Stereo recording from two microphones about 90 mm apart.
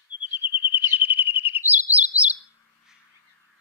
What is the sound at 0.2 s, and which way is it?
Bird, 70° left (ahead or behind).